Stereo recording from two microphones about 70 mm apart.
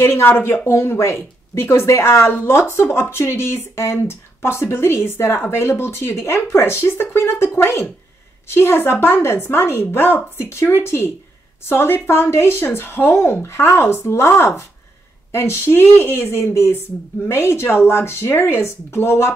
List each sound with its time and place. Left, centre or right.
0.0 s speech: left